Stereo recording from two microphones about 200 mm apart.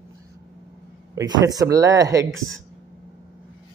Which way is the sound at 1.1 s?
15° right (ahead or behind).